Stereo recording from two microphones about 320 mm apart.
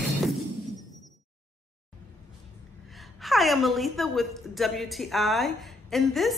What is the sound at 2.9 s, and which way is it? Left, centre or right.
A woman's voice, centre.